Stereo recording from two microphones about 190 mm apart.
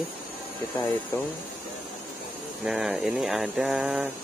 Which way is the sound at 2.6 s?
Centre (ahead or behind).